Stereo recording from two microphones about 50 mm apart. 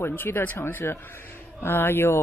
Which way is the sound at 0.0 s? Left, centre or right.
Left.